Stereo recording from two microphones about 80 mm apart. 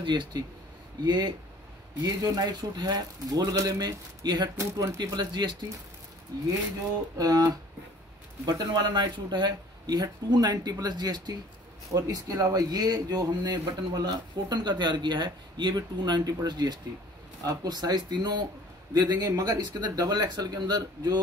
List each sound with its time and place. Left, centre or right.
0.0 s speech: right
1.0 s speech: right
2.0 s speech: right
4.6 s speech: right
7.2 s speech: right
18.9 s speech: right